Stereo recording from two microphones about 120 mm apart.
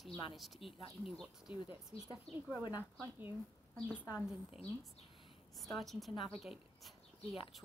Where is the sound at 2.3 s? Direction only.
60° left (ahead or behind).